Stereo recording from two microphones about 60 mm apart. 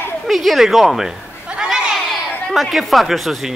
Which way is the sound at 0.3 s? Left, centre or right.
Centre.